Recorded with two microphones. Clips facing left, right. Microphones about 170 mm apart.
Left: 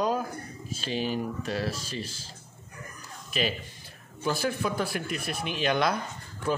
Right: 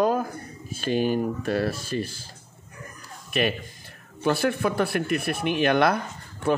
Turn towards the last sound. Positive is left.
turn(degrees=-65)  # may be behind; listen again after turning